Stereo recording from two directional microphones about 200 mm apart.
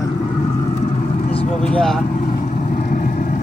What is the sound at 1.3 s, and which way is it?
Vehicle, 35° left (ahead or behind).